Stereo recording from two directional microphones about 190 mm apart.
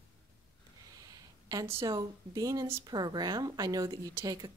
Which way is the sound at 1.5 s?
15° right (ahead or behind).